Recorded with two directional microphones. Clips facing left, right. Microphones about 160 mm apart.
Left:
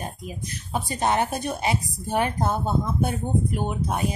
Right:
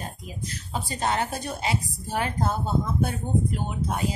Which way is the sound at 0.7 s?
20° left (ahead or behind).